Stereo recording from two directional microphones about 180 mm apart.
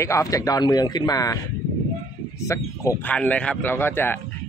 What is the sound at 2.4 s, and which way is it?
Speech, 15° left (ahead or behind).